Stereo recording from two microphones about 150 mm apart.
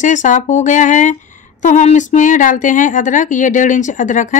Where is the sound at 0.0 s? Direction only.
55° left (ahead or behind).